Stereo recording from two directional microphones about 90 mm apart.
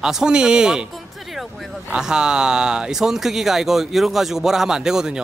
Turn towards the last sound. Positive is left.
turn(degrees=-5)  # may be behind; listen again after turning